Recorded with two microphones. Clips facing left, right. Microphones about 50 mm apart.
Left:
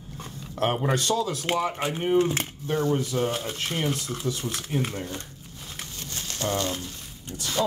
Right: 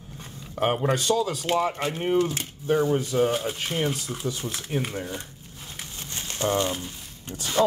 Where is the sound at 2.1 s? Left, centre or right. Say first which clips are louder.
Left 2 dB; left.